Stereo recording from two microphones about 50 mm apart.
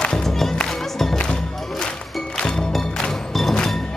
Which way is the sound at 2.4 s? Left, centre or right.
Centre.